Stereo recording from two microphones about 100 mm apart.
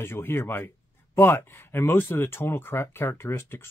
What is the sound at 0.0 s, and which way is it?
Speech, 25° left (ahead or behind).